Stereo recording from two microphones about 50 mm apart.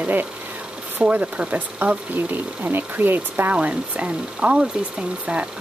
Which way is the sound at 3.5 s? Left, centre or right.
Right.